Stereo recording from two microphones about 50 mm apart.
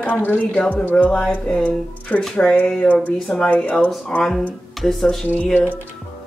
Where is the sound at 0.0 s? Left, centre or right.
Left.